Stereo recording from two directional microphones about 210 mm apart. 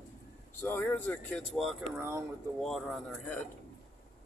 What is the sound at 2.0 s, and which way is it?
Speech, 10° right (ahead or behind).